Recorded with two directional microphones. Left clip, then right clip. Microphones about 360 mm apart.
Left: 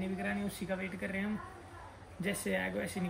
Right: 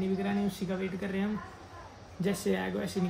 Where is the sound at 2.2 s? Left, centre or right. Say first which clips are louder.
Right 4 dB; centre.